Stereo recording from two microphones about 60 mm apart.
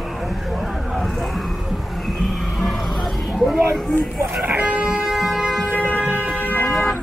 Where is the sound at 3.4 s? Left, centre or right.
Centre.